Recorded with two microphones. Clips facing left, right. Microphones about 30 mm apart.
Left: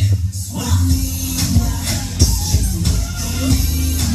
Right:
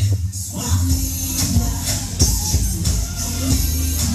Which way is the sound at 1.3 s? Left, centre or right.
Centre.